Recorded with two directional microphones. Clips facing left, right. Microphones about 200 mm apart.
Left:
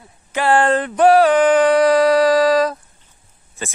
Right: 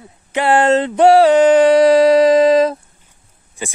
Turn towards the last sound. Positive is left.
turn(degrees=-15)  # may be behind; listen again after turning